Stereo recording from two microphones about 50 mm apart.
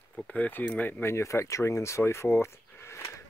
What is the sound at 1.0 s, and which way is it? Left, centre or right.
Speech, left.